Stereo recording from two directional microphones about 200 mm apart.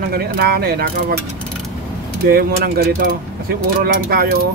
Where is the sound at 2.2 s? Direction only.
50° right (ahead or behind).